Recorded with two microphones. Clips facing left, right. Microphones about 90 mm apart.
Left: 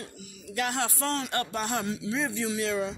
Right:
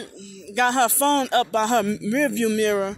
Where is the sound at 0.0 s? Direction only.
90° right.